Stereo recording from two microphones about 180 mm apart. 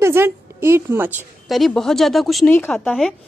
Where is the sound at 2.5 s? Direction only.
10° left (ahead or behind).